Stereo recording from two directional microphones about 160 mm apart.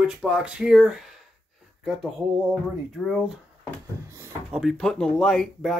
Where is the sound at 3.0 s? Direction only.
Centre (ahead or behind).